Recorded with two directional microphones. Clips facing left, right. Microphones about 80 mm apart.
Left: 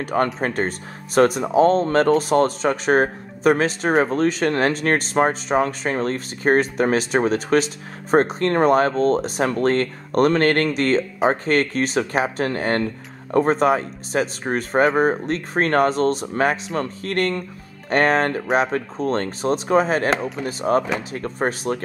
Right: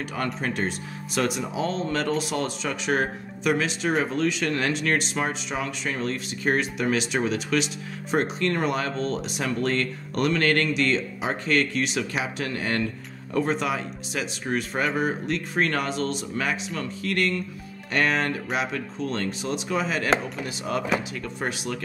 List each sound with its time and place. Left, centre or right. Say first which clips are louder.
0.0 s speech: left 8 dB; left